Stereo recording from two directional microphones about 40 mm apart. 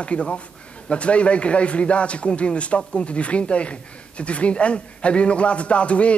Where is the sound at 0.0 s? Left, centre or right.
Left.